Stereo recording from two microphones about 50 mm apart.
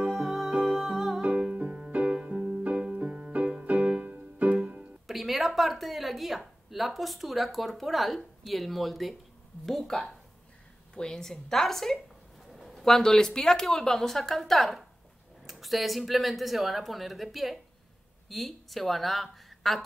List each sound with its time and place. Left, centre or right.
0.2 s music: centre
0.5 s music: centre
0.7 s music: centre
1.2 s music: right
5.0 s speech: centre